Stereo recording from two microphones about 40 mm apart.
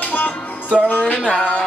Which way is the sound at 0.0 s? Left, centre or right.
Left.